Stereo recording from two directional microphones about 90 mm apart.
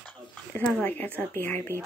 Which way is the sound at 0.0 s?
20° left (ahead or behind).